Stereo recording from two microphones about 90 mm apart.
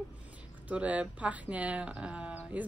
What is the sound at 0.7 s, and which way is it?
Speech, 15° right (ahead or behind).